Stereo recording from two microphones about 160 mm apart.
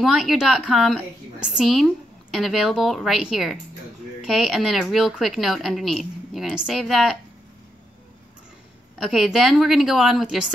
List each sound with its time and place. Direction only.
0.0 s a woman's voice: centre (ahead or behind)
8.9 s a woman's voice: centre (ahead or behind)